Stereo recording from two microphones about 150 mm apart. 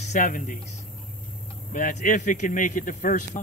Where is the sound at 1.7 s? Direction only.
60° left (ahead or behind).